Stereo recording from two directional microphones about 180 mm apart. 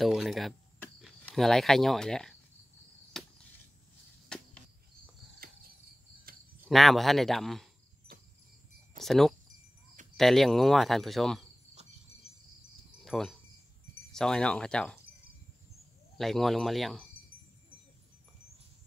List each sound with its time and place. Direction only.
0.0 s speech: centre (ahead or behind)
3.1 s chop: centre (ahead or behind)
4.3 s cricket: 5° left (ahead or behind)
5.4 s cricket: 55° right (ahead or behind)
6.7 s speech: centre (ahead or behind)
8.1 s a sound: 55° right (ahead or behind)
9.0 s speech: centre (ahead or behind)
13.0 s a sound: centre (ahead or behind)
14.1 s speech: 5° left (ahead or behind)
16.2 s speech: centre (ahead or behind)